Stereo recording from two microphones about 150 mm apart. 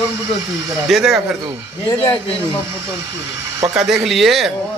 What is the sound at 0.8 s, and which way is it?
Speech, centre (ahead or behind).